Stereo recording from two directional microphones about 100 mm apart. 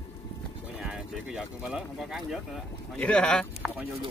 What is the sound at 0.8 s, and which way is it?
Speech, 5° right (ahead or behind).